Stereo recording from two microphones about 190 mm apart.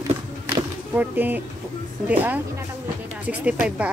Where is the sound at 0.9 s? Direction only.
10° right (ahead or behind).